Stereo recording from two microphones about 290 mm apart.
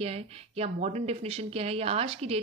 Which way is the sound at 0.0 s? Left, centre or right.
Right.